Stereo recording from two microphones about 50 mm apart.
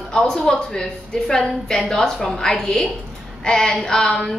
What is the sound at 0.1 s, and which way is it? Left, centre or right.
A woman's voice, centre.